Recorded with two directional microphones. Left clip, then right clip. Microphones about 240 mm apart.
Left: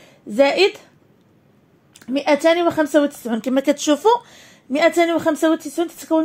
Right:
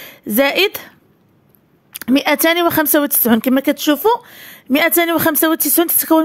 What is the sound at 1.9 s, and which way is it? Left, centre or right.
A woman's voice, right.